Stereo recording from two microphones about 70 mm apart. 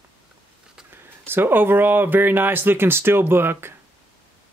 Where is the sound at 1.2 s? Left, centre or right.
Right.